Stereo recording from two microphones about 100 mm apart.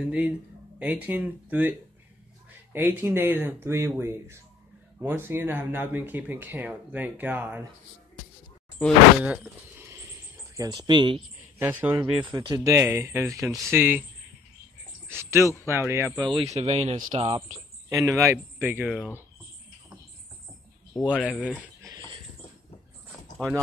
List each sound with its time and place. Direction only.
0.0 s speech: 10° right (ahead or behind)
8.8 s speech: 10° left (ahead or behind)
9.2 s a sound: 15° right (ahead or behind); by 11.2 s 50° right (ahead or behind)
11.5 s speech: 20° right (ahead or behind)
12.2 s speech: 50° right (ahead or behind)
12.6 s speech: 25° right (ahead or behind)
13.7 s speech: 20° right (ahead or behind)
15.0 s speech: 25° right (ahead or behind)
16.2 s speech: 55° right (ahead or behind)
16.4 s speech: 90° right
17.1 s speech: 70° right (ahead or behind)
17.8 s speech: 30° right (ahead or behind)
21.0 s speech: 10° right (ahead or behind)